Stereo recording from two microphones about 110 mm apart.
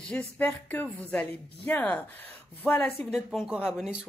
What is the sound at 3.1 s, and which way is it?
Speech, centre (ahead or behind).